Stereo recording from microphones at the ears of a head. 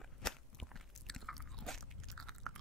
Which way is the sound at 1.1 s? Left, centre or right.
Centre.